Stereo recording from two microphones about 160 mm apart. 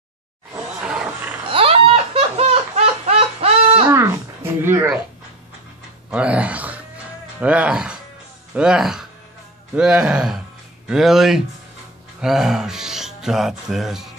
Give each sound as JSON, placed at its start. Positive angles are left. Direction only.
{"t": 0.8, "sound": "roaring cats", "side_deg": -10}
{"t": 1.4, "sound": "laughter", "side_deg": -35}
{"t": 3.9, "sound": "a sound", "side_deg": -20}
{"t": 4.6, "sound": "speech", "side_deg": -15}
{"t": 6.0, "sound": "a sound", "side_deg": -10}
{"t": 7.3, "sound": "speech", "side_deg": -10}